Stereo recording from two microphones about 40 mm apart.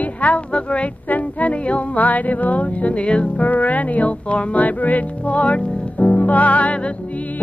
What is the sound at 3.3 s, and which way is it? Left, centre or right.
Music, left.